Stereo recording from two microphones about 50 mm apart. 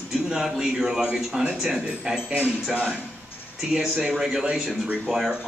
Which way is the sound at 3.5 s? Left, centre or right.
Centre.